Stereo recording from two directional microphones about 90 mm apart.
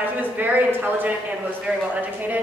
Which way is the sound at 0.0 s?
20° right (ahead or behind).